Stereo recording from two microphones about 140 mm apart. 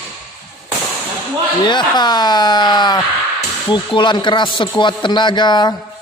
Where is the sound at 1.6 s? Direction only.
30° left (ahead or behind).